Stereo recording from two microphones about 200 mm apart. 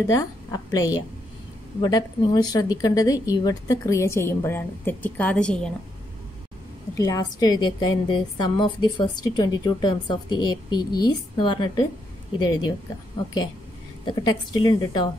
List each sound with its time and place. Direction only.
0.0 s a woman's voice: 15° left (ahead or behind)
7.0 s a woman's voice: 20° left (ahead or behind)
14.0 s a woman's voice: 20° left (ahead or behind)